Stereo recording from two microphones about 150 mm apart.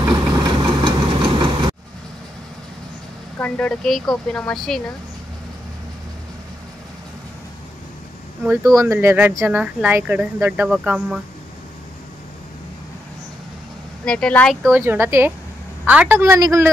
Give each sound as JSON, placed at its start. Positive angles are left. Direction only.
{"t": 0.1, "sound": "engine", "side_deg": -25}
{"t": 3.3, "sound": "a woman's voice", "side_deg": 10}
{"t": 8.6, "sound": "speech", "side_deg": -20}
{"t": 14.0, "sound": "speech", "side_deg": 5}
{"t": 14.7, "sound": "speech", "side_deg": -15}